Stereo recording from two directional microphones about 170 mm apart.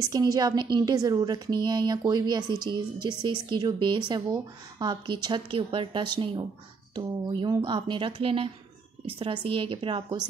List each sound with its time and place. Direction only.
0.0 s a woman's voice: 20° right (ahead or behind)